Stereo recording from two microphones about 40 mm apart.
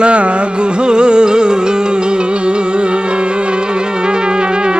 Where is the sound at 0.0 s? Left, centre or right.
Right.